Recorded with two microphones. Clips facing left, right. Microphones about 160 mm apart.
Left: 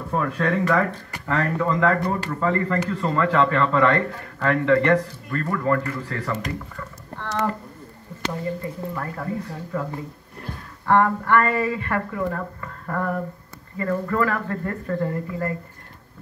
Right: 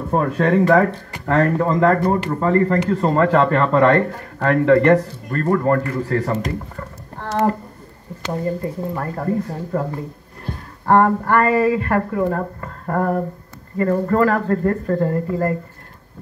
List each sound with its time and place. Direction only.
0.1 s speech: 45° right (ahead or behind)
10.9 s speech: 40° right (ahead or behind)